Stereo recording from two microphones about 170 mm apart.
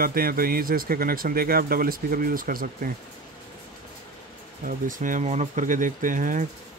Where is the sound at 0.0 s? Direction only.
60° right (ahead or behind).